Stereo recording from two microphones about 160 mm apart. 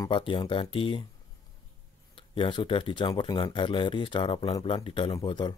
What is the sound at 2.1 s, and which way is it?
Speech, 30° left (ahead or behind).